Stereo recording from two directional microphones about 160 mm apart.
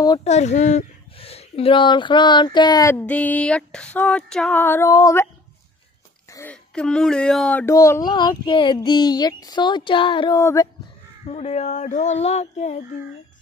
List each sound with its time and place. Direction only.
0.2 s speech: 45° left (ahead or behind); by 2.9 s 25° left (ahead or behind)
2.9 s female singing: 10° left (ahead or behind)
6.3 s speech: 10° left (ahead or behind)
7.7 s speech: 20° left (ahead or behind)
10.4 s speech: 20° left (ahead or behind)
11.2 s speech: 40° left (ahead or behind)